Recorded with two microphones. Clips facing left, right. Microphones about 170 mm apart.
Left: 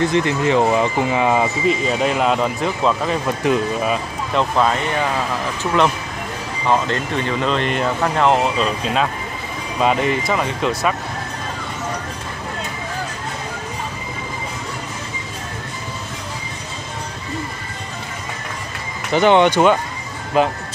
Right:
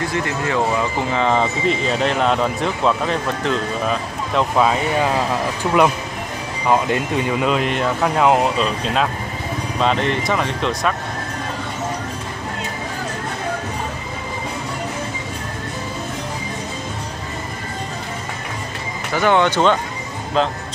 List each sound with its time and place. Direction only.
0.0 s speech: 20° left (ahead or behind); by 4.7 s 5° right (ahead or behind)
6.7 s speech: 10° right (ahead or behind)
19.1 s speech: 20° left (ahead or behind)